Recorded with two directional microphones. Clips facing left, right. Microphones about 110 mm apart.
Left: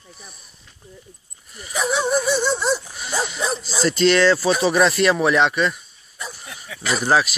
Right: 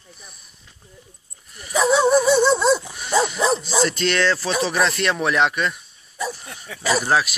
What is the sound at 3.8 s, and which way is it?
Speech, centre (ahead or behind).